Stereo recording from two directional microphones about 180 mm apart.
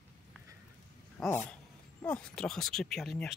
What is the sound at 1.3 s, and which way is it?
Speech, 5° left (ahead or behind).